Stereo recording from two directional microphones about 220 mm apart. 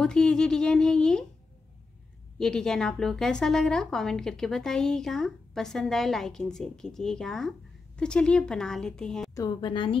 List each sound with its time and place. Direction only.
0.0 s speech: 5° left (ahead or behind)
2.3 s a woman's voice: 5° left (ahead or behind)
9.3 s a woman's voice: 15° left (ahead or behind)